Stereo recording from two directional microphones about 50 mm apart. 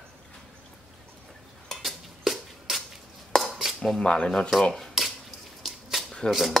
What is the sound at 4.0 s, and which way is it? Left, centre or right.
Speech, centre.